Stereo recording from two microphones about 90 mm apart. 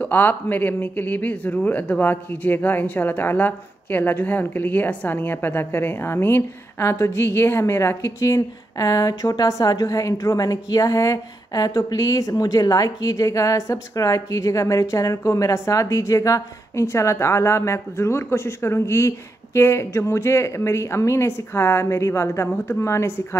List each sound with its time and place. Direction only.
0.0 s a woman's voice: 20° left (ahead or behind)